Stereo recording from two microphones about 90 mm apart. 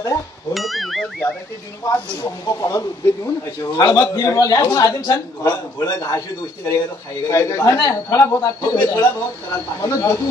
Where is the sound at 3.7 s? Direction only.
45° left (ahead or behind).